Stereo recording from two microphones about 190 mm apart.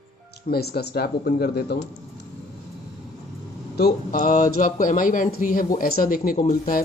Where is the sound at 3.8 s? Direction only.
50° left (ahead or behind).